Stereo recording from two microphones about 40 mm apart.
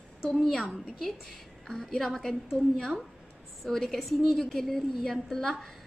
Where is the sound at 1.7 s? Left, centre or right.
Centre.